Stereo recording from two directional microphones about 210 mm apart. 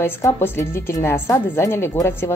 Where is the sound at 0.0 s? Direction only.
10° left (ahead or behind).